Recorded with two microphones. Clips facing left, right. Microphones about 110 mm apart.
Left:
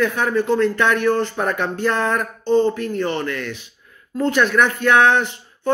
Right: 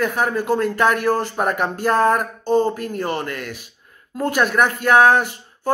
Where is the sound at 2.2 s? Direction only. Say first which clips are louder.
Left 1 dB; 10° right (ahead or behind).